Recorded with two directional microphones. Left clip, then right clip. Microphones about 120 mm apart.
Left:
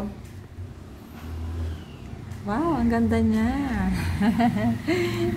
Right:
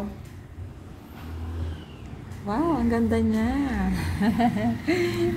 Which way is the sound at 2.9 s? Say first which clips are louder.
Left 1 dB; centre (ahead or behind).